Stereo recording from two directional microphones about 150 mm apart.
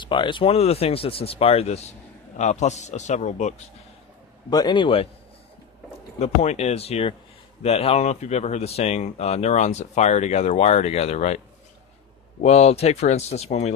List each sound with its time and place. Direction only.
0.0 s speech: 30° left (ahead or behind); by 3.6 s 50° left (ahead or behind)
4.5 s a man's voice: 25° left (ahead or behind)
6.1 s speech: 45° left (ahead or behind)